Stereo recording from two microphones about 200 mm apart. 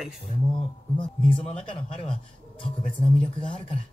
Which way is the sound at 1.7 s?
25° left (ahead or behind).